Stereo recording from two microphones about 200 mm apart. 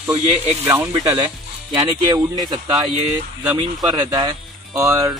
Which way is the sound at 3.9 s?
20° right (ahead or behind).